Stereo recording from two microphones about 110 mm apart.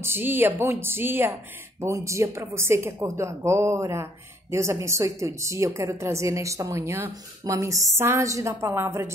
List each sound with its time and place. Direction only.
0.0 s a woman's voice: 20° right (ahead or behind)